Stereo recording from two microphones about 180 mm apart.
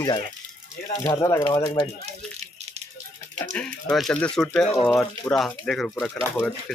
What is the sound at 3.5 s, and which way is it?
Speech, 5° left (ahead or behind).